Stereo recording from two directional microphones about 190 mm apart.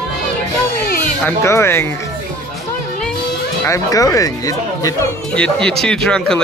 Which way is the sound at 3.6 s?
15° left (ahead or behind).